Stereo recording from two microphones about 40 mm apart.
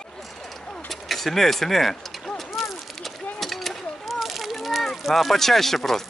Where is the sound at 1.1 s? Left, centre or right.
Centre.